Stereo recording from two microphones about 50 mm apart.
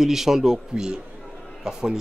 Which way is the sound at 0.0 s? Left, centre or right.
Centre.